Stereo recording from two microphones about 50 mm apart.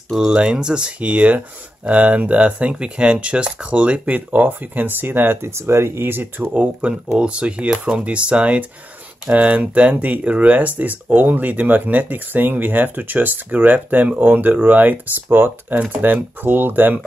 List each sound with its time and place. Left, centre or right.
0.3 s speech: centre
1.0 s speech: right
7.2 s speech: right